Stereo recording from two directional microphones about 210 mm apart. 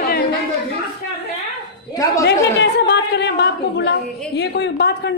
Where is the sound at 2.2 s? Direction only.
55° left (ahead or behind).